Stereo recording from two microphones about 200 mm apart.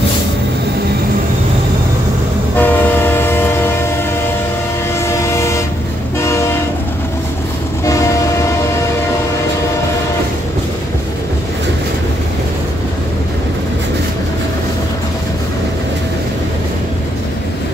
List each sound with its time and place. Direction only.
2.5 s train: 10° left (ahead or behind)
5.0 s train: 15° left (ahead or behind)
7.8 s train: 15° left (ahead or behind)